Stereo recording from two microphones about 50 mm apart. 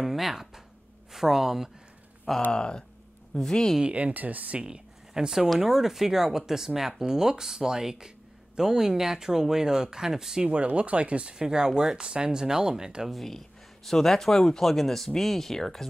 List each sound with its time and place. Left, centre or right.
0.0 s a sound: centre
1.1 s speech: centre
2.5 s speech: centre
3.8 s speech: right
4.6 s speech: centre
13.1 s speech: centre